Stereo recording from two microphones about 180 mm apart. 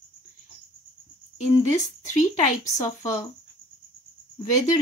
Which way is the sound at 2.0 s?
45° left (ahead or behind).